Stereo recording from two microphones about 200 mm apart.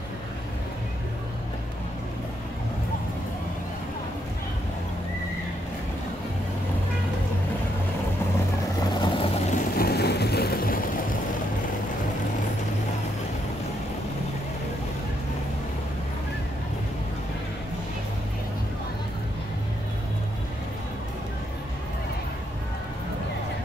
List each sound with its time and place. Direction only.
9.0 s vehicle: 30° left (ahead or behind)
9.8 s vehicle: 50° left (ahead or behind)